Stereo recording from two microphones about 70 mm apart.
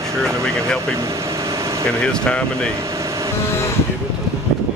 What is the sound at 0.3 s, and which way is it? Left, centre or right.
Speech, right.